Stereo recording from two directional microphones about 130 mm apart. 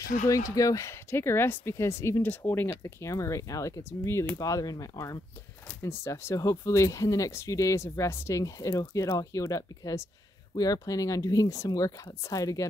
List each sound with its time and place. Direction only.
0.3 s speech: 25° left (ahead or behind)